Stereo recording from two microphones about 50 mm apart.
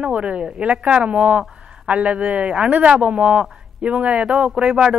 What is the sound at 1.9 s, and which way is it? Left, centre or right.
Speech, right.